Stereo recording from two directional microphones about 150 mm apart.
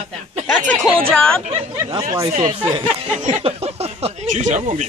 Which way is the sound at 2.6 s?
35° right (ahead or behind).